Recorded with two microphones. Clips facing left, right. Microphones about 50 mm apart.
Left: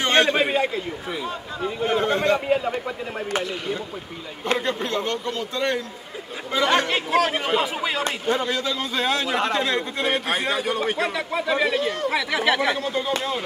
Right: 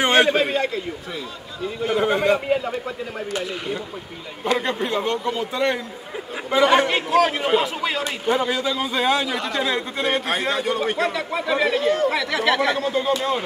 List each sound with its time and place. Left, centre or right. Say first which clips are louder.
0.0 s a sound: right 2 dB; centre
0.4 s a man's voice: even; centre
1.6 s a man's voice: even; left
2.0 s a man's voice: right 3 dB; centre
2.5 s a man's voice: even; centre
4.6 s a man's voice: right 2 dB; centre